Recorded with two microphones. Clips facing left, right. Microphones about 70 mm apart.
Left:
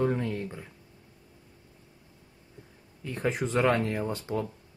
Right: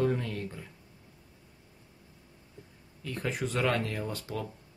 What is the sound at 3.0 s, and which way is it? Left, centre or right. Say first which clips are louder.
Speech: left 4 dB; left.